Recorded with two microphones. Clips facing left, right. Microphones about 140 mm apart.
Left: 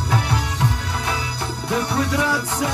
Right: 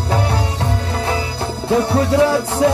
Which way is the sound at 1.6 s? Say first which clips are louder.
Right 7 dB; 30° right (ahead or behind).